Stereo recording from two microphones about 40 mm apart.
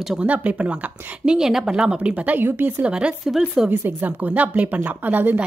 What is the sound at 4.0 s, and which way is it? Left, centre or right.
Speech, right.